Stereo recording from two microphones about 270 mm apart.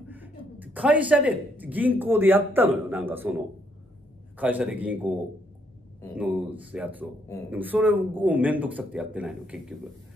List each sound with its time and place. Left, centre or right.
0.1 s speech: centre
6.1 s speech: centre